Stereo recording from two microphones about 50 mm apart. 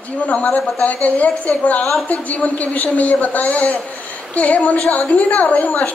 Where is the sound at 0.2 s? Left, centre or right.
Left.